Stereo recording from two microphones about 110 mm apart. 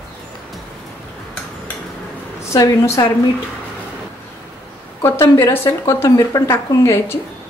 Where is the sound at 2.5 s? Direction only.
30° left (ahead or behind).